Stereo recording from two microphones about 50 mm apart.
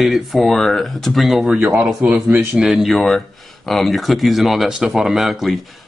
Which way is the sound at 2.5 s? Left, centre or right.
Centre.